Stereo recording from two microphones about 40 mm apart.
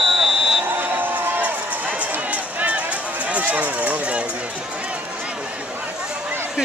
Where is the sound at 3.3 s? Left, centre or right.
Right.